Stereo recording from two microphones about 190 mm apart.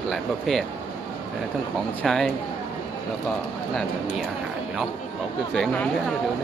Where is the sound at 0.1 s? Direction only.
Centre (ahead or behind).